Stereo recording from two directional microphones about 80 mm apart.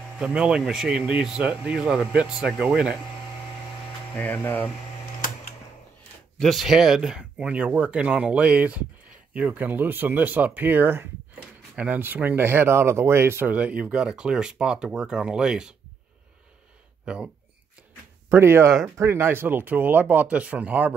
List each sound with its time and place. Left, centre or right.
0.2 s speech: centre
4.1 s hum: left
6.4 s speech: centre
17.0 s speech: centre
18.3 s speech: right